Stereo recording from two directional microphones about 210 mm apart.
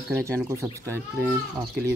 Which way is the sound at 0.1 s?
10° right (ahead or behind).